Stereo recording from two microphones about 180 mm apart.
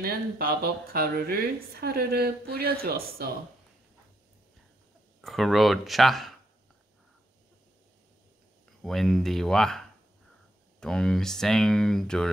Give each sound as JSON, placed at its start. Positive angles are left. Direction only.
{"t": 0.0, "sound": "a woman's voice", "side_deg": -60}
{"t": 5.2, "sound": "speech", "side_deg": 0}
{"t": 8.8, "sound": "speech", "side_deg": 0}